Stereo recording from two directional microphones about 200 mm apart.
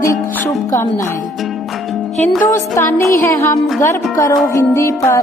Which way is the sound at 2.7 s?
15° left (ahead or behind).